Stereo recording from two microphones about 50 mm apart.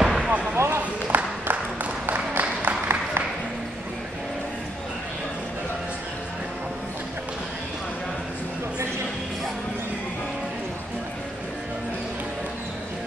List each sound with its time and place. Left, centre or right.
0.0 s basketball bounce: centre
0.6 s basketball bounce: right
1.0 s a sound: right
2.6 s applause: right